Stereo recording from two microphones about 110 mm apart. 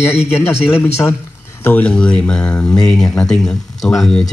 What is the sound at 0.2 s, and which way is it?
Speech, 5° right (ahead or behind).